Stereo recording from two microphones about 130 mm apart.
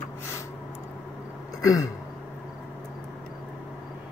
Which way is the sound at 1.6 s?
25° left (ahead or behind).